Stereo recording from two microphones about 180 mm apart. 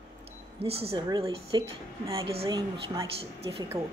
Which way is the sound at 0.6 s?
35° right (ahead or behind).